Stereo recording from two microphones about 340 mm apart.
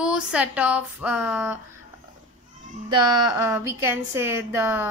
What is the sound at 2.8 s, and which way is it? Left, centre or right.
Speech, centre.